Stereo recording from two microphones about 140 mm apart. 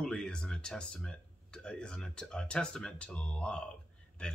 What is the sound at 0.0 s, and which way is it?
Speech, 5° left (ahead or behind).